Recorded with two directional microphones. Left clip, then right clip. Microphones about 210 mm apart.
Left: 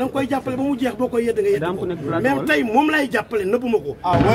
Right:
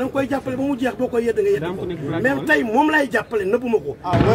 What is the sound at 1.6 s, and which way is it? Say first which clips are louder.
Speech: left 2 dB; 20° left (ahead or behind).